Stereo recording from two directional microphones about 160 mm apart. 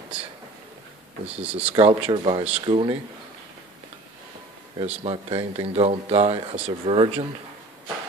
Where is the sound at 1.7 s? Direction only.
35° right (ahead or behind).